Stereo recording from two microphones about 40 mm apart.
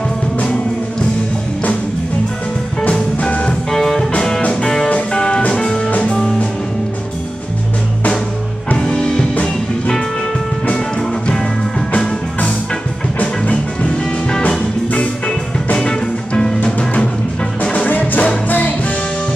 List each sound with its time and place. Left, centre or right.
3.2 s music: left
3.4 s music: centre
5.9 s music: left
8.7 s music: left
13.5 s music: left
17.8 s music: left